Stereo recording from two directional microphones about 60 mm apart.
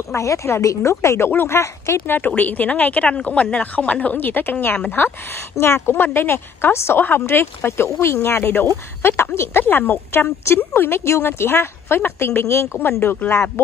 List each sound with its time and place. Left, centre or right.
0.1 s speech: left
1.3 s a woman's voice: left
13.0 s a woman's voice: left